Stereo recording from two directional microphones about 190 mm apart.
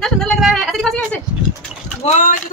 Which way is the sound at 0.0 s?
Centre (ahead or behind).